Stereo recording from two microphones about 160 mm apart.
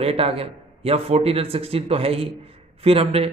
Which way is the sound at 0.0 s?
35° right (ahead or behind).